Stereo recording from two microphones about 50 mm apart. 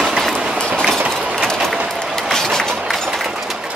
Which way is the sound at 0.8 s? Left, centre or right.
Centre.